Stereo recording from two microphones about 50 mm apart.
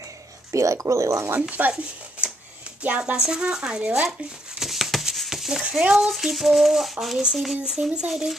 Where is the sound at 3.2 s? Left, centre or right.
Centre.